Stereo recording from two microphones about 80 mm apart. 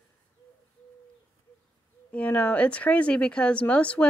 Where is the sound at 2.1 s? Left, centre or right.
Left.